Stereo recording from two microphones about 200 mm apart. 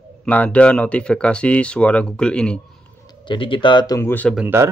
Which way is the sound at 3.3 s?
25° left (ahead or behind).